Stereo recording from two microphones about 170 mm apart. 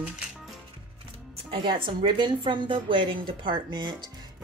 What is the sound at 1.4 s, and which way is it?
Speech, 30° right (ahead or behind).